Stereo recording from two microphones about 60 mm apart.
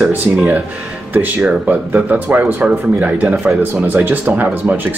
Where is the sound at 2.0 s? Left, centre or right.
Right.